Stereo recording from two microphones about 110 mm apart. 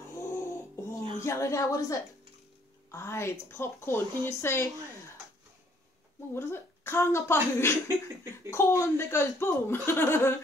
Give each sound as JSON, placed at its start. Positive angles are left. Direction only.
{"t": 0.1, "sound": "a sound", "side_deg": 25}
{"t": 1.2, "sound": "speech", "side_deg": 25}
{"t": 6.3, "sound": "speech", "side_deg": 20}